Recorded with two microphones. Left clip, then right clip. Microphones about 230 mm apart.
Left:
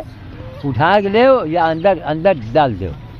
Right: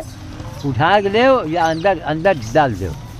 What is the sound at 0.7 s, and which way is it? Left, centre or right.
Speech, centre.